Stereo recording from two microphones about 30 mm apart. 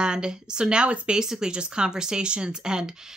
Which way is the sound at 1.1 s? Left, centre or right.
Centre.